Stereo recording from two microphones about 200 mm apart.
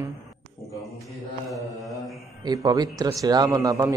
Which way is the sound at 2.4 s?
20° right (ahead or behind).